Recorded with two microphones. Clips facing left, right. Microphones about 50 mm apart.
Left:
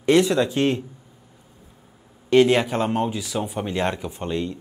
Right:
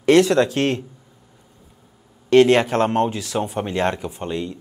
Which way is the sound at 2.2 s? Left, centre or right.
Right.